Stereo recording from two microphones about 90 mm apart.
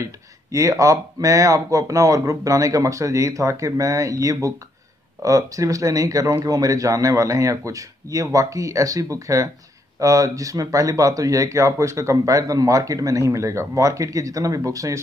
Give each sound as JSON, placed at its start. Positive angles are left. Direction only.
{"t": 0.0, "sound": "speech", "side_deg": -35}